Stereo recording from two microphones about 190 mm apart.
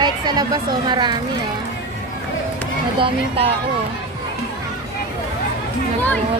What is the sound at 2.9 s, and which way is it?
Speech, 30° right (ahead or behind).